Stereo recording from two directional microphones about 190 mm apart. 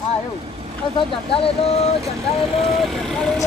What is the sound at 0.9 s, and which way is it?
Speech, 30° left (ahead or behind).